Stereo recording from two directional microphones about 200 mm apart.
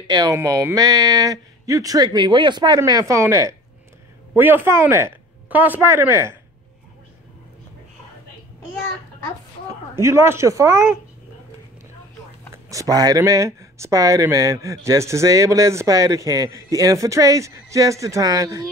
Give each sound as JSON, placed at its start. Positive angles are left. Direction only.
{"t": 0.0, "sound": "speech", "side_deg": -20}
{"t": 9.9, "sound": "speech", "side_deg": -15}
{"t": 12.6, "sound": "speech", "side_deg": -15}